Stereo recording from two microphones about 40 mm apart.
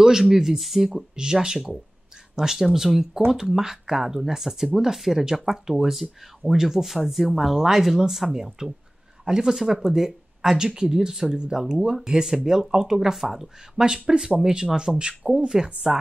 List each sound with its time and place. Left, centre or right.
0.0 s speech: centre
1.1 s speech: centre